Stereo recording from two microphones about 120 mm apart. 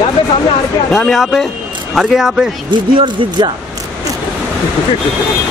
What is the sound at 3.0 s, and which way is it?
Speech, 45° right (ahead or behind).